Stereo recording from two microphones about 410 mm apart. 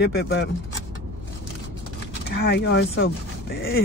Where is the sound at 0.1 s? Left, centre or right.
Left.